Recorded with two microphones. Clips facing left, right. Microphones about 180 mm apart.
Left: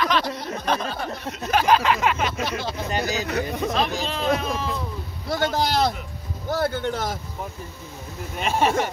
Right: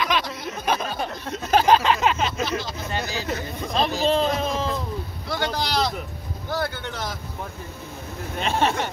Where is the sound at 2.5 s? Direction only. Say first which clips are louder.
Left 1 dB; 15° left (ahead or behind).